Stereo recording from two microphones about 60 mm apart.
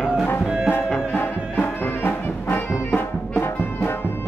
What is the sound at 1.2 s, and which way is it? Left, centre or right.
Music, left.